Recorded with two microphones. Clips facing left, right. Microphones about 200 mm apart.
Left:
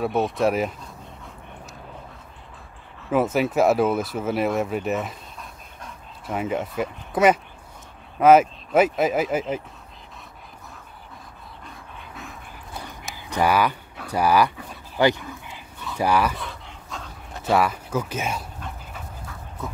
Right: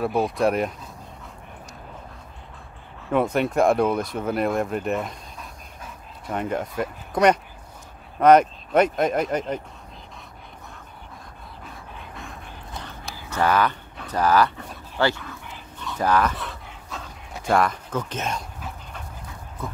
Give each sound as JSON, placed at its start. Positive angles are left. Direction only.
{"t": 0.0, "sound": "speech", "side_deg": 0}
{"t": 3.1, "sound": "speech", "side_deg": 5}
{"t": 11.6, "sound": "dog", "side_deg": 0}
{"t": 15.0, "sound": "speech", "side_deg": 15}
{"t": 16.3, "sound": "dog", "side_deg": 0}